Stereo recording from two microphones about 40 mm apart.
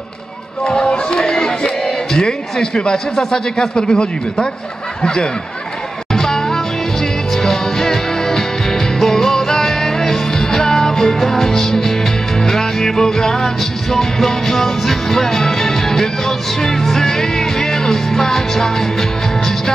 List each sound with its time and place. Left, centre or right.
0.7 s a sound: centre
2.1 s a man's voice: centre
6.1 s music: centre